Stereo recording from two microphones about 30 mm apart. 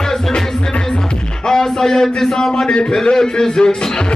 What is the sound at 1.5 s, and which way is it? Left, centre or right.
Speech, centre.